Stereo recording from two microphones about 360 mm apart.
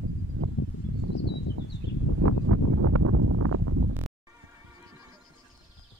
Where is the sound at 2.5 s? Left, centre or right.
Right.